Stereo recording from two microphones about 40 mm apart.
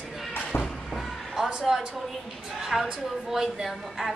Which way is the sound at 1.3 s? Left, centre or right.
Right.